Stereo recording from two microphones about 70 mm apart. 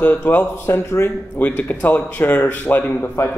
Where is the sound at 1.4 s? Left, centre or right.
Left.